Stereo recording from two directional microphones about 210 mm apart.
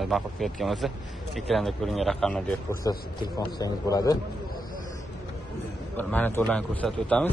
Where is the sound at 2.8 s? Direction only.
20° left (ahead or behind).